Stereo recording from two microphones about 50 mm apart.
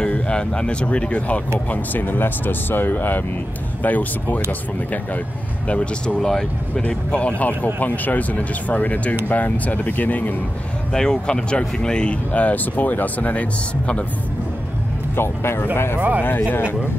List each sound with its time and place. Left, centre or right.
0.0 s speech: centre
1.7 s speech: left
5.7 s speech: left
10.9 s speech: centre
12.3 s speech: left
15.1 s speech: left
16.0 s speech: right